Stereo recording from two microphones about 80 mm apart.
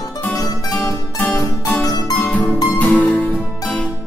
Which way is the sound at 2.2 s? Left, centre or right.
Centre.